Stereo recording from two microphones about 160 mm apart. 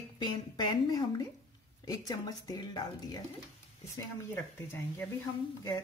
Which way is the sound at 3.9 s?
15° left (ahead or behind).